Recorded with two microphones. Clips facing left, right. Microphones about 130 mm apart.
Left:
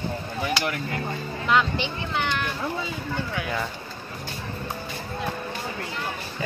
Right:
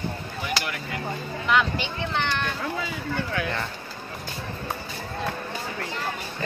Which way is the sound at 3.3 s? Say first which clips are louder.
Left 1 dB; 10° left (ahead or behind).